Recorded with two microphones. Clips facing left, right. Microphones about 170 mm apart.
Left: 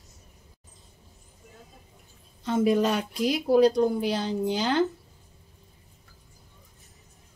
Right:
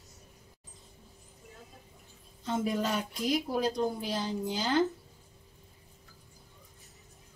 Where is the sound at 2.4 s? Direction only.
75° left (ahead or behind).